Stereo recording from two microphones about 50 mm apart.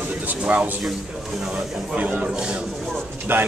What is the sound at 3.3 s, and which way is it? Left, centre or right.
Speech, right.